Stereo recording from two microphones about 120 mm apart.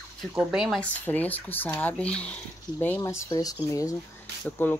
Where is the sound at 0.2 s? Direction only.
5° right (ahead or behind).